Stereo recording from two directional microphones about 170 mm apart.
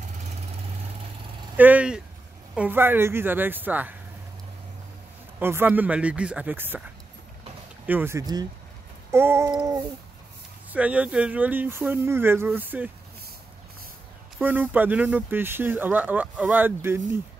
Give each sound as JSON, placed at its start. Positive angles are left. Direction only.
{"t": 1.6, "sound": "speech", "side_deg": -10}
{"t": 5.4, "sound": "speech", "side_deg": -15}
{"t": 7.8, "sound": "speech", "side_deg": -10}
{"t": 10.7, "sound": "speech", "side_deg": -10}
{"t": 14.4, "sound": "speech", "side_deg": -10}